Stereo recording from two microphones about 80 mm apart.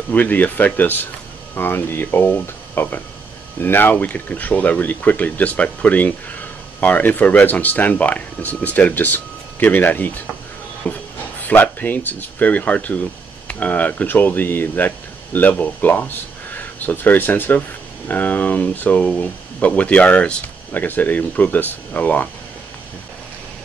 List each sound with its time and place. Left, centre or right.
0.1 s speech: left
10.8 s a sound: centre
11.4 s speech: left